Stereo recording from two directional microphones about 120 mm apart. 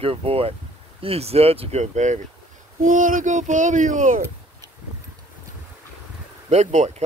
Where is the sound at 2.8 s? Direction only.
90° right.